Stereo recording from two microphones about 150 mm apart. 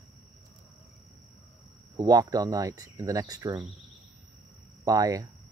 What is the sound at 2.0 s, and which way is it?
Speech, 20° right (ahead or behind).